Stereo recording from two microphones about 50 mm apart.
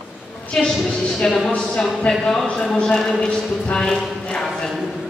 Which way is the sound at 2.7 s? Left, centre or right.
Centre.